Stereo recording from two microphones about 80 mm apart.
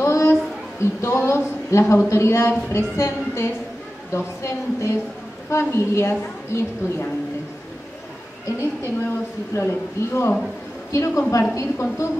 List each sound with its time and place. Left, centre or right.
0.0 s a woman's voice: left
8.5 s a woman's voice: left